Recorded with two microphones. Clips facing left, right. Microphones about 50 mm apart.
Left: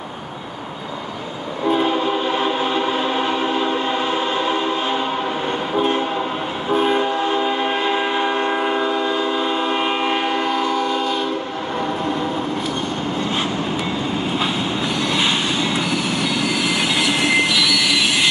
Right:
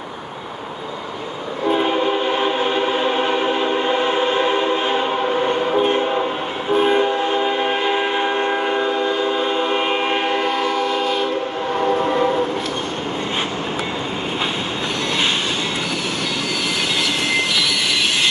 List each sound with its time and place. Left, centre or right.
1.7 s train: centre